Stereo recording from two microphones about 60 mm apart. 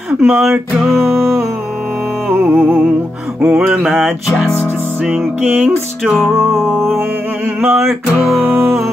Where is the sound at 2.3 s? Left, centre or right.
Right.